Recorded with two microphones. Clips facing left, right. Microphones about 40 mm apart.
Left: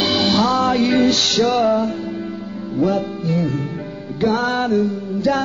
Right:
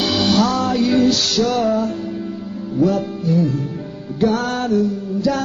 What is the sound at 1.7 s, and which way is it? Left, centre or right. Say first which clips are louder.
Music: left 1 dB; centre.